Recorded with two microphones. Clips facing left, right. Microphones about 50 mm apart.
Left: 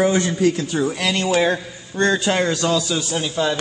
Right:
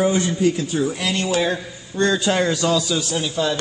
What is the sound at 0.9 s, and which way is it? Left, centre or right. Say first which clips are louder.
Speech: left 2 dB; left.